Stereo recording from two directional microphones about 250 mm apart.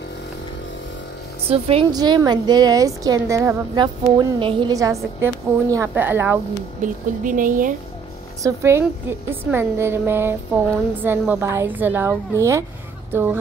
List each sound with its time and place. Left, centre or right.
1.5 s a woman's voice: right
6.8 s speech: right
8.4 s a woman's voice: centre